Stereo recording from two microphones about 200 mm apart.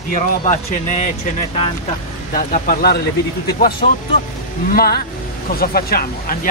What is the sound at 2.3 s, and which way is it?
Speech, 45° left (ahead or behind).